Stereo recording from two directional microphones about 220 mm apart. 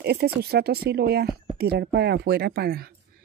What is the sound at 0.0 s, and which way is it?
Speech, 45° right (ahead or behind).